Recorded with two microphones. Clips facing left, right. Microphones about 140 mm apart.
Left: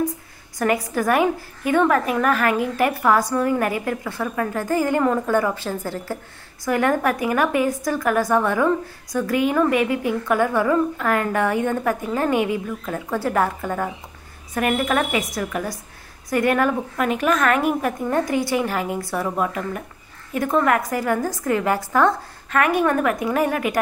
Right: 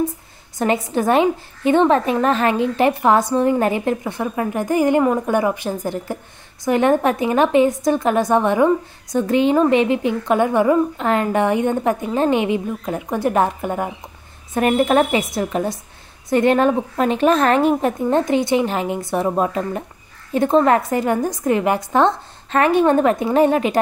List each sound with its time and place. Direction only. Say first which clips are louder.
0.6 s a woman's voice: right 2 dB; 25° right (ahead or behind)